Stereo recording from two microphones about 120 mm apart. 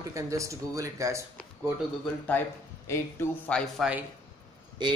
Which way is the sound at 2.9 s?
20° left (ahead or behind).